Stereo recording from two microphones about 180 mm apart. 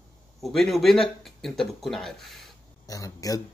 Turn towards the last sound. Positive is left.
turn(degrees=20)  # may be behind; listen again after turning